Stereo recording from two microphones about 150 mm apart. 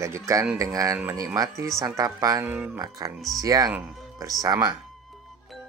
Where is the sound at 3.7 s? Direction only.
5° right (ahead or behind).